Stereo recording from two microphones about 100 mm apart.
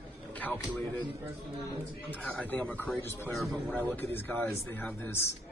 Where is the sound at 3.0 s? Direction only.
25° left (ahead or behind).